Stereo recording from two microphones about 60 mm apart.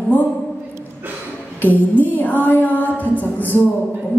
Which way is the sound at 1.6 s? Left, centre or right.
Left.